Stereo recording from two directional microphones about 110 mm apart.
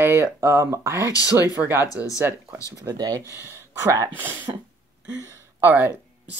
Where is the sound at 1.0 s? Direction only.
30° left (ahead or behind).